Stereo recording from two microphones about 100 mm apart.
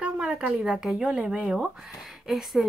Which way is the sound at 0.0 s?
10° right (ahead or behind).